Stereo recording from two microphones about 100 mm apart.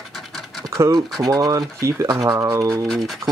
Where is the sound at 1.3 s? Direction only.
40° right (ahead or behind).